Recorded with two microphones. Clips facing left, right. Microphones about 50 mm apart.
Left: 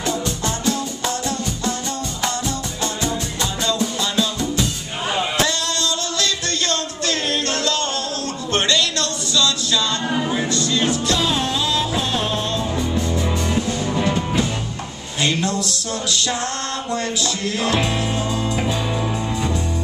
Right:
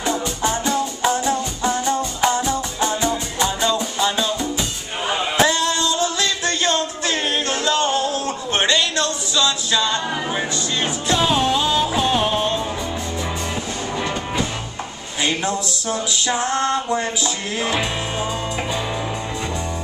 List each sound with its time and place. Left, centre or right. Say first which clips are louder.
0.0 s music: right 1 dB; centre
13.6 s music: left 4 dB; centre
15.2 s music: left 1 dB; centre